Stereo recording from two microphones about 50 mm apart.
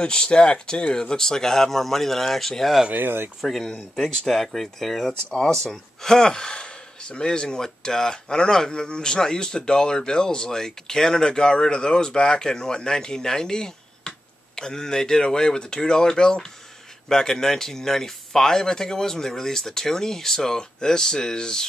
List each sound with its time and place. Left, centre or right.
0.0 s speech: centre
2.9 s speech: right
3.3 s speech: centre